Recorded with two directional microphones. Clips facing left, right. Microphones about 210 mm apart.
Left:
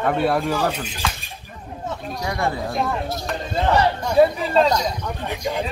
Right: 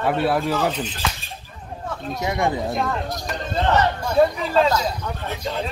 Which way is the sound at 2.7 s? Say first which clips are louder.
Even; centre (ahead or behind).